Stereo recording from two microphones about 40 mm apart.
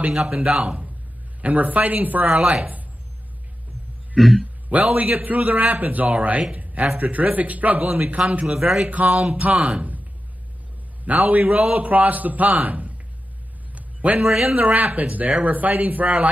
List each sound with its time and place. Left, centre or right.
0.1 s speech: centre
1.4 s a man's voice: right
4.2 s a man's voice: centre
4.6 s a man's voice: right
6.5 s a sound: right
7.0 s a man's voice: right
8.5 s speech: centre
8.8 s a man's voice: right
11.1 s a man's voice: right
13.7 s a sound: right
14.4 s a man's voice: right